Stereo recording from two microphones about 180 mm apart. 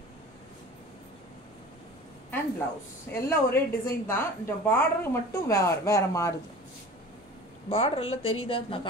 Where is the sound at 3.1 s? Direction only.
15° left (ahead or behind).